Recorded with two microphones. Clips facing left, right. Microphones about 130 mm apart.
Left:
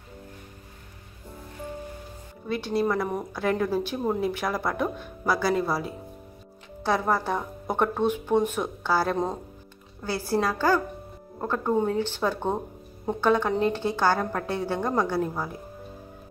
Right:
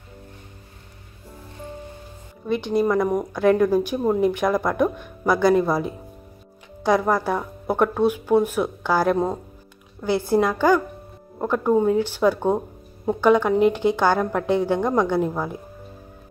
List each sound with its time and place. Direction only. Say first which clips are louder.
2.4 s speech: right 5 dB; 15° right (ahead or behind)
10.0 s speech: right 6 dB; 20° right (ahead or behind)